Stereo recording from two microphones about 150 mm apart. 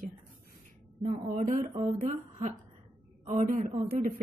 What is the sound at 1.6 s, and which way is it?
Speech, 35° right (ahead or behind).